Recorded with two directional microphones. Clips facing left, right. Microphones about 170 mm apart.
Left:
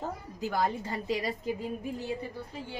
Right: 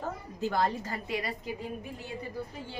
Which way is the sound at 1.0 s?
40° left (ahead or behind).